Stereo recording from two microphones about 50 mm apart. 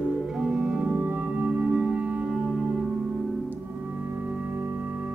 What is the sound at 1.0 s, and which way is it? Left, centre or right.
Music, right.